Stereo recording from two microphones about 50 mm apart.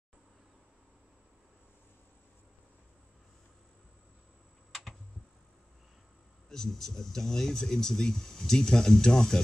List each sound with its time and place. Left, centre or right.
6.5 s speech: centre